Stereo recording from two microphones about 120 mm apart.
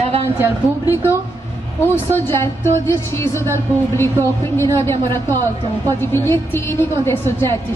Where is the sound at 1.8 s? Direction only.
20° left (ahead or behind).